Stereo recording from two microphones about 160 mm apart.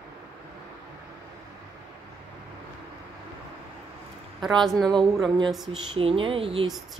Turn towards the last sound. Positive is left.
turn(degrees=-35)  # may be behind; listen again after turning